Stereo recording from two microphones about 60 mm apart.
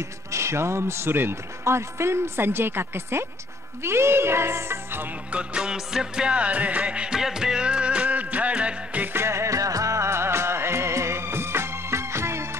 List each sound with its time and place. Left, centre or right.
0.3 s a man's voice: right
5.3 s music: centre
9.0 s music: right